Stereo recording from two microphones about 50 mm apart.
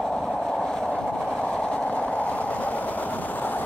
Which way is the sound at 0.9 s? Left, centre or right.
Centre.